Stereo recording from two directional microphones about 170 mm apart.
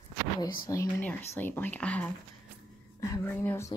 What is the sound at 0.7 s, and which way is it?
A woman's voice, 20° left (ahead or behind).